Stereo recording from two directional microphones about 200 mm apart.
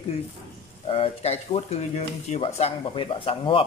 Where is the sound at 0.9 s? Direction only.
30° left (ahead or behind).